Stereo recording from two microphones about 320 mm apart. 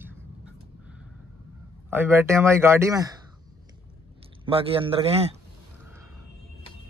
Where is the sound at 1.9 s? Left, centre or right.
Centre.